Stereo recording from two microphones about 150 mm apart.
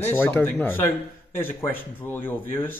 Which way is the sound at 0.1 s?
15° left (ahead or behind).